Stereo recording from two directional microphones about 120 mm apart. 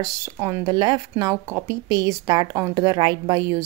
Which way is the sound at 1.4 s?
20° right (ahead or behind).